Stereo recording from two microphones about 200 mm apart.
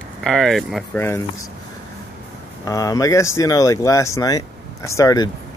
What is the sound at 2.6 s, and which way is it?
Speech, 15° left (ahead or behind).